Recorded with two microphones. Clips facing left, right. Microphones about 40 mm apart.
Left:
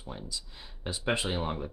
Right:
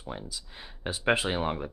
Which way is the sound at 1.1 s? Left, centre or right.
Centre.